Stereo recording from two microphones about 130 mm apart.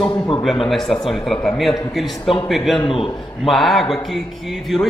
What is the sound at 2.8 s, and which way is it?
Speech, 45° left (ahead or behind).